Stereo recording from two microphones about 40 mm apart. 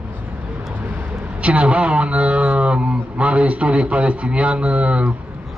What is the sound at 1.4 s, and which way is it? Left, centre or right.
A man's voice, right.